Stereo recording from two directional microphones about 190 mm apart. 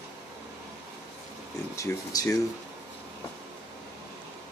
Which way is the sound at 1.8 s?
15° left (ahead or behind).